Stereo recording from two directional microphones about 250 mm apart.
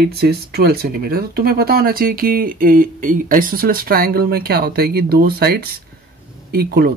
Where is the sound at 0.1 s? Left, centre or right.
Right.